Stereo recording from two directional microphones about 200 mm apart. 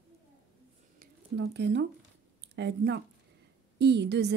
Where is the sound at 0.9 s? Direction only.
60° right (ahead or behind).